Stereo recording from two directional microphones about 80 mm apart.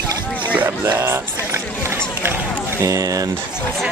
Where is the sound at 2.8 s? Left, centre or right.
Right.